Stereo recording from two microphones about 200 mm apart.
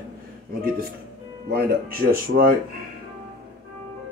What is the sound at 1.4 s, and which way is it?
Speech, 50° right (ahead or behind).